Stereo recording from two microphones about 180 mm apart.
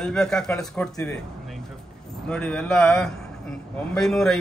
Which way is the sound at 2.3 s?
5° left (ahead or behind).